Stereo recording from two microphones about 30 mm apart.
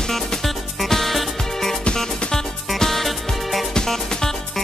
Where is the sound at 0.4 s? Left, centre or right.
Centre.